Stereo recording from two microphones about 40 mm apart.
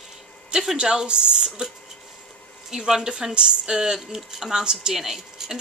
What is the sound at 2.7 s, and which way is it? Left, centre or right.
Speech, centre.